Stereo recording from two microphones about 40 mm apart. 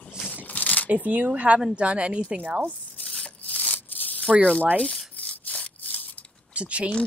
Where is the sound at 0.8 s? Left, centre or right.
Right.